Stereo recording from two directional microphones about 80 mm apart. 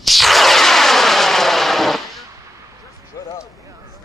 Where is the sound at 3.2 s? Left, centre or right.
Left.